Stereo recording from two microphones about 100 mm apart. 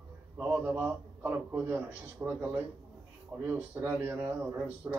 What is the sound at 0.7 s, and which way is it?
A man's voice, 20° right (ahead or behind).